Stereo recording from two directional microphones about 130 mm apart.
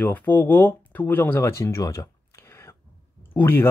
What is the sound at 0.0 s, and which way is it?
Speech, 15° left (ahead or behind).